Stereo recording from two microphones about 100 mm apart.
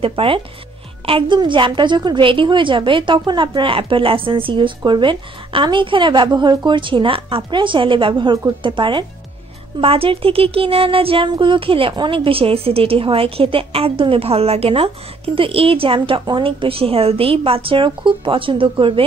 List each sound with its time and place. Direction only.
0.0 s a woman's voice: 60° right (ahead or behind)
9.8 s a woman's voice: 65° right (ahead or behind)